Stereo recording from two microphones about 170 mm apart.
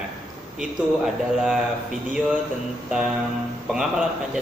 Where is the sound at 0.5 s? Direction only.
5° right (ahead or behind).